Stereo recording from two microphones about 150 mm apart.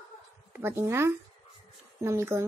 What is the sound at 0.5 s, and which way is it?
A woman's voice, 15° right (ahead or behind).